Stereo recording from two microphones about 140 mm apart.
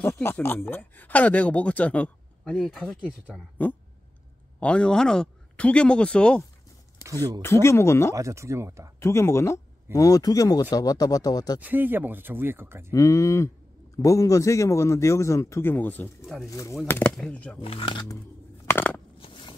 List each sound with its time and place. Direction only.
0.0 s speech: 15° left (ahead or behind); by 3.2 s centre (ahead or behind)
3.3 s speech: 10° left (ahead or behind)
7.4 s a man's voice: 20° left (ahead or behind)
8.1 s speech: 20° right (ahead or behind)
9.0 s a man's voice: 20° left (ahead or behind)
11.6 s speech: 15° right (ahead or behind)
12.9 s a man's voice: 20° left (ahead or behind); by 17.6 s 5° left (ahead or behind)
17.6 s speech: 40° left (ahead or behind)
18.7 s a sound: 15° left (ahead or behind)
19.1 s a sound: 40° left (ahead or behind)